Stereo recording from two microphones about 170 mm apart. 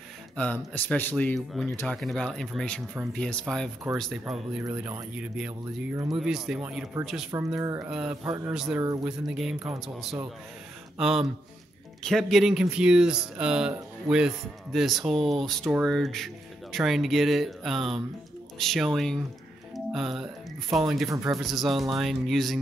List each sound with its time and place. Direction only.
0.4 s speech: 5° left (ahead or behind)
7.6 s speech: 15° right (ahead or behind)
7.9 s speech: 5° right (ahead or behind)